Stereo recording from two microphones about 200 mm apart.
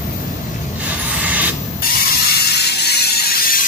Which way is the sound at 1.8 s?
50° left (ahead or behind).